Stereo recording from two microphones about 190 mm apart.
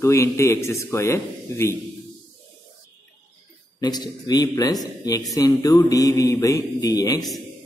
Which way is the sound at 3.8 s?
20° left (ahead or behind).